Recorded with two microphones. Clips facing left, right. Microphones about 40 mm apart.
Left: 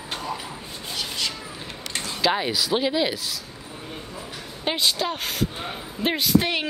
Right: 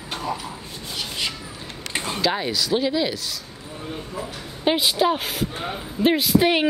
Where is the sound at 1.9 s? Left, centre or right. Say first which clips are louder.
Right 5 dB; right.